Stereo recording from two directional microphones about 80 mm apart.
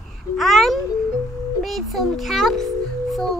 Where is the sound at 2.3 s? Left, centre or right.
Centre.